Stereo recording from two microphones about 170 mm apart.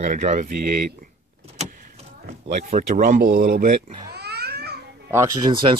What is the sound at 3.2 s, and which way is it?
Speech, 60° right (ahead or behind).